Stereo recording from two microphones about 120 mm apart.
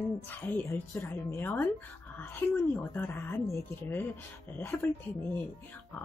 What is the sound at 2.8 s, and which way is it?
A woman's voice, 15° left (ahead or behind).